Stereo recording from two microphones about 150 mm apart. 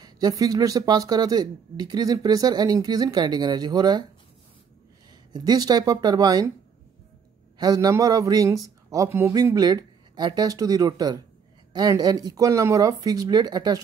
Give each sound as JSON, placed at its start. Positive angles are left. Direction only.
{"t": 0.0, "sound": "speech", "side_deg": -25}
{"t": 5.3, "sound": "speech", "side_deg": -25}
{"t": 7.5, "sound": "speech", "side_deg": -25}